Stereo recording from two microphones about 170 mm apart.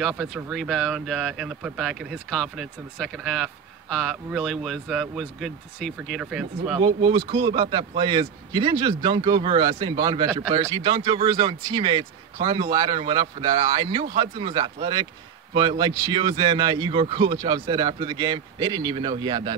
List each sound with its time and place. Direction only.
0.2 s speech: centre (ahead or behind)
6.8 s a man's voice: 30° right (ahead or behind)